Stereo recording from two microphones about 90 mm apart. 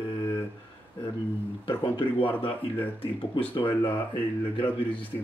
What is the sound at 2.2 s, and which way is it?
Speech, 20° left (ahead or behind).